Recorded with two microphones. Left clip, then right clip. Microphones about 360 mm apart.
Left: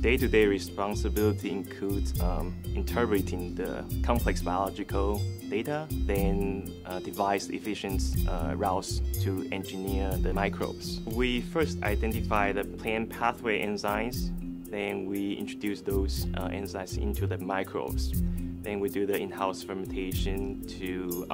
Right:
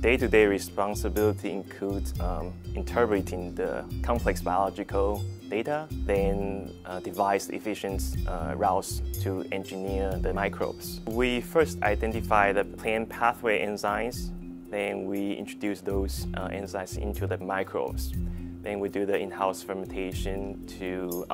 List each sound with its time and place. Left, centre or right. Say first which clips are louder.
0.0 s speech: right 3 dB; right
6.4 s speech: even; right
11.1 s speech: right 5 dB; right